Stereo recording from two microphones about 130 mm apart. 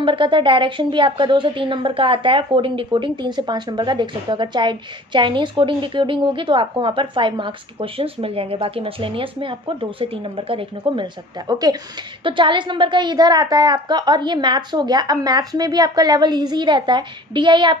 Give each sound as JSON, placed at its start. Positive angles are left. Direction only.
{"t": 0.0, "sound": "speech", "side_deg": -40}